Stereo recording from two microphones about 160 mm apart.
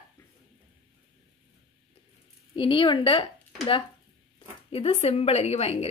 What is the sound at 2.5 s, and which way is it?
Speech, 30° left (ahead or behind).